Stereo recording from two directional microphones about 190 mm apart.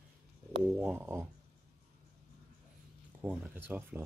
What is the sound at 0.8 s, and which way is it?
Speech, 10° right (ahead or behind).